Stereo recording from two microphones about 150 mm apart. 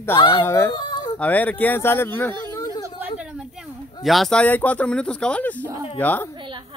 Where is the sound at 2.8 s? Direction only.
15° right (ahead or behind).